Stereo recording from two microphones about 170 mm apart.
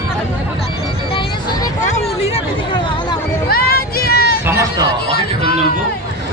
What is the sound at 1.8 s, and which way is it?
Speech, 40° left (ahead or behind).